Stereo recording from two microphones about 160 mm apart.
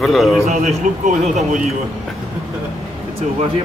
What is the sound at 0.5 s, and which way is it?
A man's voice, 45° right (ahead or behind).